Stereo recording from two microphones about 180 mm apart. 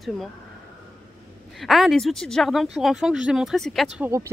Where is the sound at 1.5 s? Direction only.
Centre (ahead or behind).